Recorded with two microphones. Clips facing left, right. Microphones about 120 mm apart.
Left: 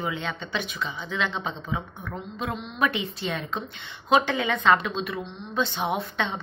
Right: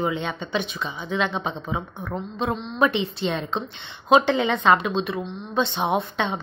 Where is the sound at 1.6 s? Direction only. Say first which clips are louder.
Right 3 dB; 30° right (ahead or behind).